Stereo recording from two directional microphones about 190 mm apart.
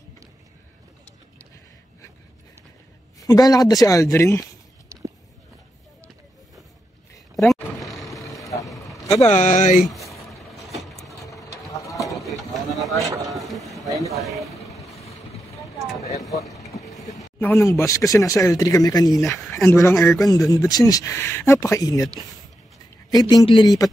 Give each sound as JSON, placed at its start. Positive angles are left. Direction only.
{"t": 3.2, "sound": "speech", "side_deg": 20}
{"t": 7.3, "sound": "a sound", "side_deg": 0}
{"t": 8.7, "sound": "vehicle", "side_deg": 15}
{"t": 9.3, "sound": "speech", "side_deg": 40}
{"t": 10.3, "sound": "vehicle", "side_deg": 0}
{"t": 11.2, "sound": "sewing machine", "side_deg": 15}
{"t": 12.0, "sound": "a sound", "side_deg": 0}
{"t": 14.2, "sound": "vehicle", "side_deg": 0}
{"t": 16.2, "sound": "vehicle", "side_deg": 15}
{"t": 17.4, "sound": "speech", "side_deg": 10}
{"t": 20.0, "sound": "speech", "side_deg": 0}
{"t": 20.2, "sound": "speech", "side_deg": 20}